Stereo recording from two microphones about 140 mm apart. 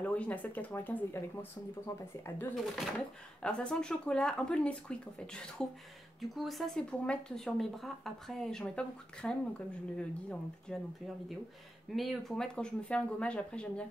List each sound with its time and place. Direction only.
0.0 s speech: 10° left (ahead or behind)
2.5 s speech: centre (ahead or behind)
11.9 s speech: centre (ahead or behind)